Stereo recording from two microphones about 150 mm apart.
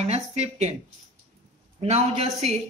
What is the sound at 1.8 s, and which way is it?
Speech, 45° right (ahead or behind).